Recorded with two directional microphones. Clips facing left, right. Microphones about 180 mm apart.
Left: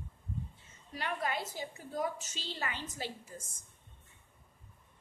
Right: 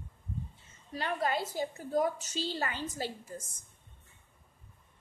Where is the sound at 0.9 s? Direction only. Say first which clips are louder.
Right 4 dB; 35° right (ahead or behind).